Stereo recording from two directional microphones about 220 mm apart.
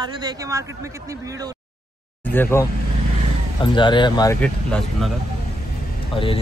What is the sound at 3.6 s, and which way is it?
Speech, 20° left (ahead or behind).